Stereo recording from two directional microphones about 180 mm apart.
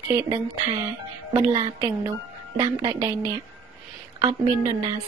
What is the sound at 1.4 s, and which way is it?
A woman's voice, 20° right (ahead or behind).